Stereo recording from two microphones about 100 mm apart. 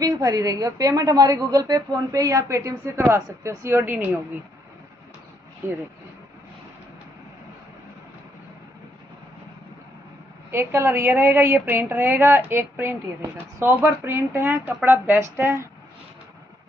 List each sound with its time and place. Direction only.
0.0 s a woman's voice: 35° right (ahead or behind); by 4.2 s 15° right (ahead or behind)
10.5 s a woman's voice: 25° right (ahead or behind)